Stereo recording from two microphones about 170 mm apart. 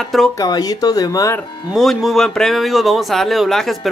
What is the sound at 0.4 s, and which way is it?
Speech, 20° left (ahead or behind).